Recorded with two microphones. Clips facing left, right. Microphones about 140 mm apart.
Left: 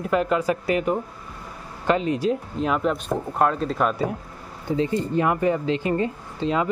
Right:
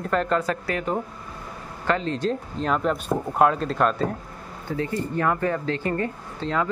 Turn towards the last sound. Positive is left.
turn(degrees=15)  # may be behind; listen again after turning